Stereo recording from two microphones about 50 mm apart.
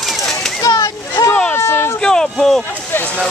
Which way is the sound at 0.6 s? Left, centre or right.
Left.